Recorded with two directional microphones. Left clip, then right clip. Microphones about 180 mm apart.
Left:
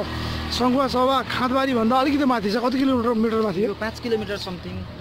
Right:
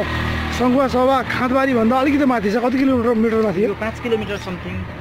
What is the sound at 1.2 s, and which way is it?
Speech, 5° left (ahead or behind).